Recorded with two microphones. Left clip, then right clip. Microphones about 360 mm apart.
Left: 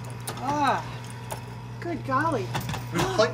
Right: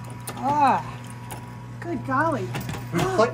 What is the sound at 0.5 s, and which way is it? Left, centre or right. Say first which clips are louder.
Speech: right 5 dB; centre.